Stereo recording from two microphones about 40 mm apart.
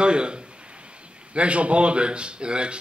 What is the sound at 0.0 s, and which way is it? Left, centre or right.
A man's voice, right.